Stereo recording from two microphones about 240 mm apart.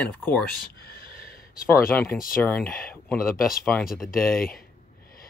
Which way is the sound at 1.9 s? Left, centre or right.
Centre.